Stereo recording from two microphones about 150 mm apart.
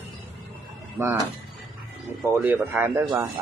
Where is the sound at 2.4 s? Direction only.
10° right (ahead or behind).